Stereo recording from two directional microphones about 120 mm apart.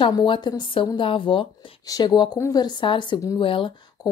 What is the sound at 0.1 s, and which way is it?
A woman's voice, 40° left (ahead or behind).